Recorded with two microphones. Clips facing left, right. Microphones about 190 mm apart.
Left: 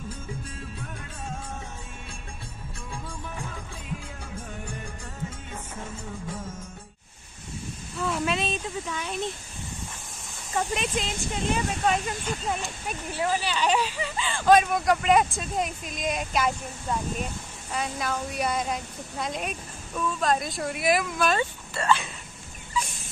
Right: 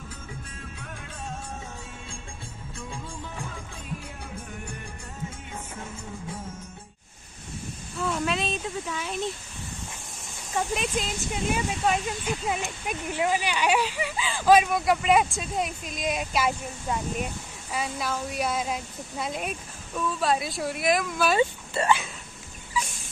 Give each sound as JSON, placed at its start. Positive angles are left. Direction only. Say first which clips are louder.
{"t": 8.0, "sound": "a sound", "louder": "even", "side_deg": 0}
{"t": 10.5, "sound": "speech", "louder": "even", "side_deg": 0}
{"t": 12.5, "sound": "speech", "louder": "right 2 dB", "side_deg": -15}
{"t": 21.4, "sound": "speech", "louder": "right 5 dB", "side_deg": -15}